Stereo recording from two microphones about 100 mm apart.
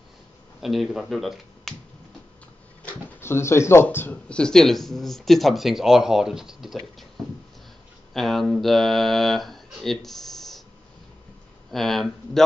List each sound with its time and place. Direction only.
0.6 s speech: centre (ahead or behind)
3.2 s speech: 25° left (ahead or behind)
4.3 s speech: 5° left (ahead or behind)
8.1 s speech: centre (ahead or behind)
11.7 s speech: centre (ahead or behind)